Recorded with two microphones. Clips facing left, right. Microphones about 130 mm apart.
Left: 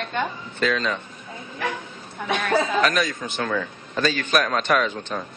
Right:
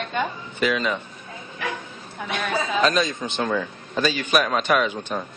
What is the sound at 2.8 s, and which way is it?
A man's voice, 25° right (ahead or behind).